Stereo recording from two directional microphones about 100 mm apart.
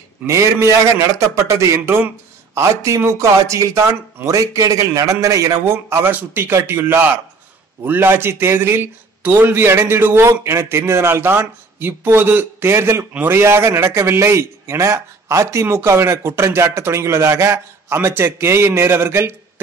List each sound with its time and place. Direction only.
0.3 s a man's voice: 30° right (ahead or behind)